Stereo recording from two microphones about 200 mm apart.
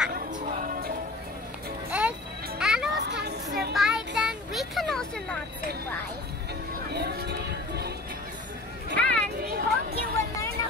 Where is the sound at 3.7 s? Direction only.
Centre (ahead or behind).